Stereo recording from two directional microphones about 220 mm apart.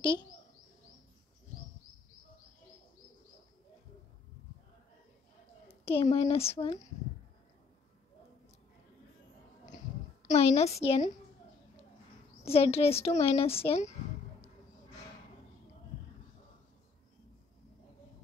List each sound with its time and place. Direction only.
5.9 s speech: 25° left (ahead or behind)
9.7 s a sound: 35° left (ahead or behind)
12.4 s speech: 25° left (ahead or behind)